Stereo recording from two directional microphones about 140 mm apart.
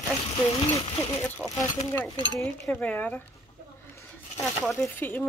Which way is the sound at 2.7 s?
10° left (ahead or behind).